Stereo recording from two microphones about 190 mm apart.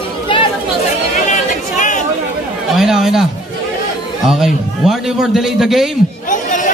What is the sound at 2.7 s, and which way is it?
Chatter, centre (ahead or behind).